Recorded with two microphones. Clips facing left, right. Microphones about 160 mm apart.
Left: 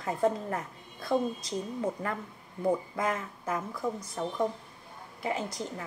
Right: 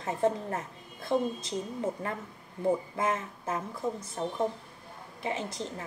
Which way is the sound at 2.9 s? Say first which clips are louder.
Right 1 dB; 25° right (ahead or behind).